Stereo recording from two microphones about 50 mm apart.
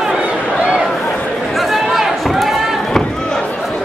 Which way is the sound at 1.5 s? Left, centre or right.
Centre.